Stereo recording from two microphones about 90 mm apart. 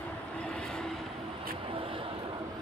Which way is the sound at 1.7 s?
90° right.